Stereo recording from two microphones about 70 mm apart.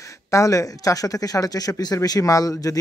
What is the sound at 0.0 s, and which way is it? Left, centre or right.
A man's voice, left.